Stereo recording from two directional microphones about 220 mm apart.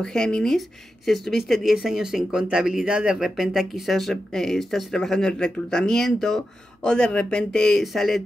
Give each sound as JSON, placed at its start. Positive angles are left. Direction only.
{"t": 0.0, "sound": "speech", "side_deg": 5}